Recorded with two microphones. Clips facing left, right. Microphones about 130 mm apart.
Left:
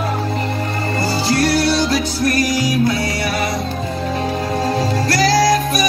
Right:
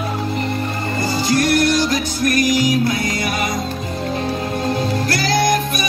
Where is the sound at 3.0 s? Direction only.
30° left (ahead or behind).